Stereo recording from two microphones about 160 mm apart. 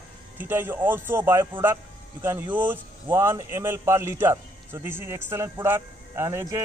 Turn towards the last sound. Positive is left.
turn(degrees=-15)  # may be behind; listen again after turning